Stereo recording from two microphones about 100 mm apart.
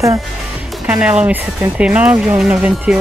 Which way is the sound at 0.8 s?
15° right (ahead or behind).